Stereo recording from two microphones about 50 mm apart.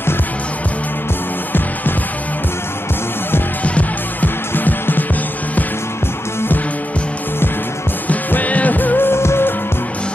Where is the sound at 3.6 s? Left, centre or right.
Left.